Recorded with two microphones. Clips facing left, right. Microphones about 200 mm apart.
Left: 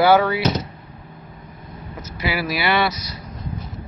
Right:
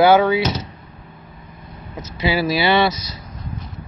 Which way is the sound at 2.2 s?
25° right (ahead or behind).